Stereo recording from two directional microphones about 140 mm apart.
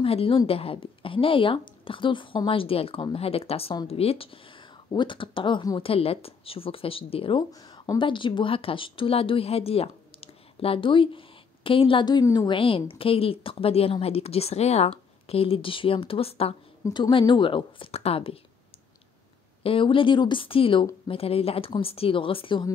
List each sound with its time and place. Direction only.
0.0 s speech: 40° left (ahead or behind)
5.9 s speech: 45° left (ahead or behind)
16.8 s speech: 30° left (ahead or behind)
19.6 s speech: 40° left (ahead or behind)